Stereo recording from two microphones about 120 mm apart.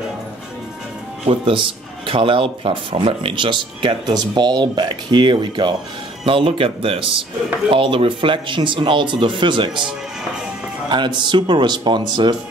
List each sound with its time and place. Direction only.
1.2 s speech: 50° right (ahead or behind)
10.9 s speech: 40° right (ahead or behind)